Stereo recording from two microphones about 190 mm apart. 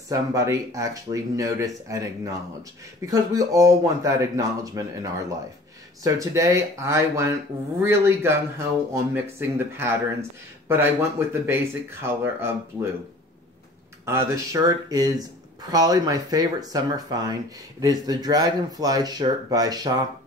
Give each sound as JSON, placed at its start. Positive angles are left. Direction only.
{"t": 0.1, "sound": "speech", "side_deg": -15}
{"t": 14.0, "sound": "speech", "side_deg": -15}